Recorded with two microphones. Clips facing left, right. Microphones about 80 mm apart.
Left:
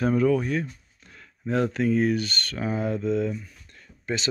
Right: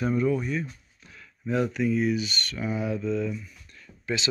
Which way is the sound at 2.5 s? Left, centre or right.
Left.